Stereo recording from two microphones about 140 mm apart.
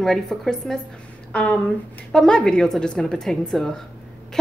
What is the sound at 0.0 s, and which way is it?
A woman's voice, 5° left (ahead or behind).